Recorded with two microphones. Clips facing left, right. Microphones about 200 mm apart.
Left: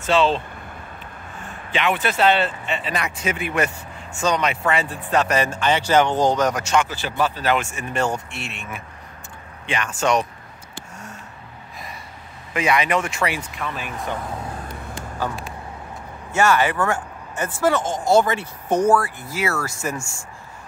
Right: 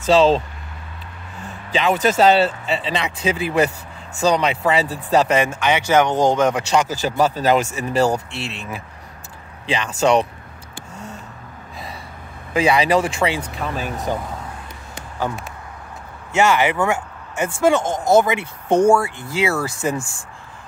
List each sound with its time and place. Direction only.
0.0 s speech: 40° right (ahead or behind)
1.7 s speech: 35° right (ahead or behind)
5.3 s speech: 15° right (ahead or behind)
6.7 s speech: 40° right (ahead or behind)
12.5 s speech: 30° right (ahead or behind)
16.3 s speech: 15° right (ahead or behind)